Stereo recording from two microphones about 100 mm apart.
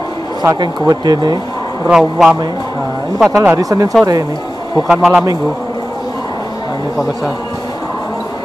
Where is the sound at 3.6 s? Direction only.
35° right (ahead or behind).